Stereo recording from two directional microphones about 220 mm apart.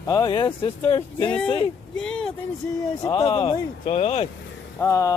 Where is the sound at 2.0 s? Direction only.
5° left (ahead or behind).